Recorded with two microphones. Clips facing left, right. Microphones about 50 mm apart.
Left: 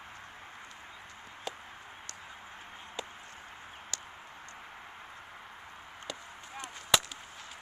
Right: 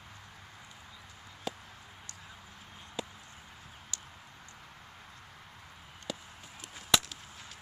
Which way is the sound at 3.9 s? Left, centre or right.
Left.